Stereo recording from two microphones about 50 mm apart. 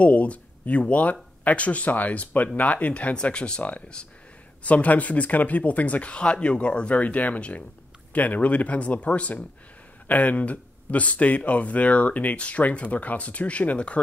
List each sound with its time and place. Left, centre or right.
0.0 s speech: left